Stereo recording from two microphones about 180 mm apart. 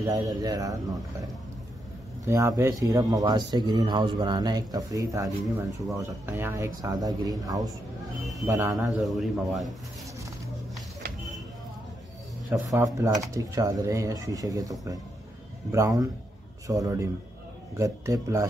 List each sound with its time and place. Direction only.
0.0 s speech: 20° right (ahead or behind)
2.2 s speech: 15° right (ahead or behind)
9.0 s a man's voice: centre (ahead or behind)
12.6 s speech: 20° right (ahead or behind)